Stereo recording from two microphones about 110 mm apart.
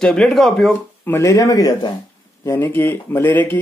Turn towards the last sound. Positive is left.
turn(degrees=20)  # may be behind; listen again after turning